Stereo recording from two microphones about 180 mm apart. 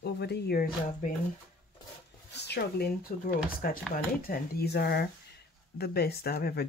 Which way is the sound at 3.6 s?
55° left (ahead or behind).